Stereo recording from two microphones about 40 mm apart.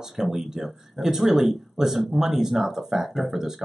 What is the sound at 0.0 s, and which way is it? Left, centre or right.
Speech, centre.